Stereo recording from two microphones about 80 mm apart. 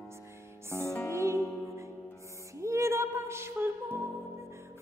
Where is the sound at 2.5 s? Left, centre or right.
Right.